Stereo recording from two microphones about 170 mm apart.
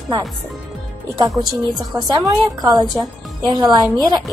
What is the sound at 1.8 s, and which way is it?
A woman's voice, 25° right (ahead or behind).